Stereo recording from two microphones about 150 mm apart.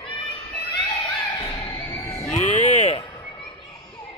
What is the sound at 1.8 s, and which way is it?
Music, 15° left (ahead or behind).